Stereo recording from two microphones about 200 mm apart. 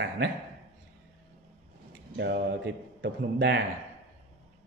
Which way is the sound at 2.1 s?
60° right (ahead or behind).